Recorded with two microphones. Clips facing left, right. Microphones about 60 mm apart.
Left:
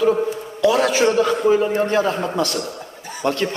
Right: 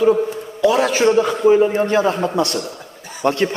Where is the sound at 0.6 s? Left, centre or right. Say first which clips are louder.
Right 1 dB; centre.